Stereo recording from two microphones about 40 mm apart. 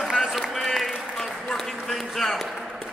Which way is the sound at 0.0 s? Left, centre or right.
Centre.